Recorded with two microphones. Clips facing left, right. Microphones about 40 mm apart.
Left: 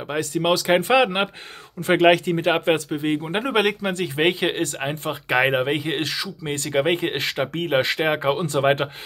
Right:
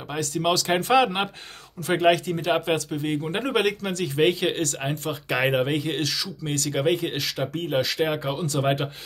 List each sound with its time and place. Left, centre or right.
0.1 s speech: left
3.2 s speech: centre; by 8.8 s left